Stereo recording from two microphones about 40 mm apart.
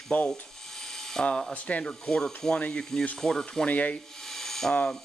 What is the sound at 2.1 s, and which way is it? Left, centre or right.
Speech, centre.